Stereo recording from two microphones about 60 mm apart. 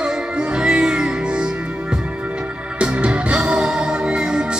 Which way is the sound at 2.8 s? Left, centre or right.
Centre.